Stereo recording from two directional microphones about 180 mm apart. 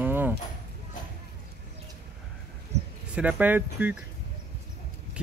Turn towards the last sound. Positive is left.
turn(degrees=-10)  # may be behind; listen again after turning